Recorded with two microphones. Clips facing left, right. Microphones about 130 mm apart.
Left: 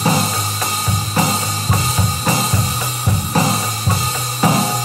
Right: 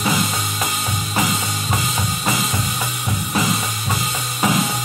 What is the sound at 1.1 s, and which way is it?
Drum kit, 35° left (ahead or behind).